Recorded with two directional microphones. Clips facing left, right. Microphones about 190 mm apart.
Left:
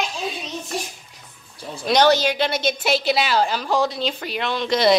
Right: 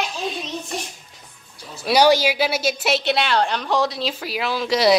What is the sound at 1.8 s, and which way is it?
A woman's voice, 10° right (ahead or behind).